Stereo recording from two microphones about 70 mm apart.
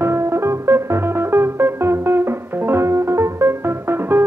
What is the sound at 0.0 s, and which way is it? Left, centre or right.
Music, right.